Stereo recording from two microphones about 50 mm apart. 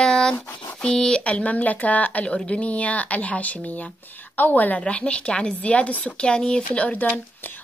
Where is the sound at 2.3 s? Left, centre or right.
Centre; by 4.8 s left.